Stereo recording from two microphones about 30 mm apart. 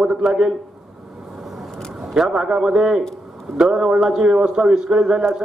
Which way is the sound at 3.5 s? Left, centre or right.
Right.